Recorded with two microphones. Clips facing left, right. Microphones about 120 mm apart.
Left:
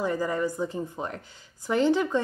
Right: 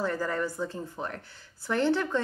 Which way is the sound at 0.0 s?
15° left (ahead or behind).